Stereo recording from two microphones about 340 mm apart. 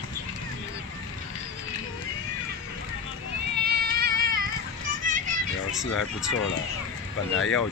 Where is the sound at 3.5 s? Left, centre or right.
Right.